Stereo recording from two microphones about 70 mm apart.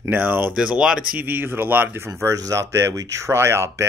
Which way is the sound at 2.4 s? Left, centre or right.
Right.